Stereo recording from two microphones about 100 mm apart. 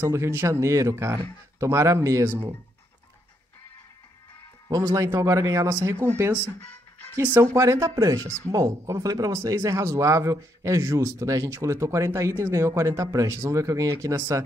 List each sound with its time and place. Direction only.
0.0 s speech: 25° right (ahead or behind)
4.6 s speech: 35° right (ahead or behind)
6.0 s speech: 20° right (ahead or behind)
7.5 s speech: 30° right (ahead or behind)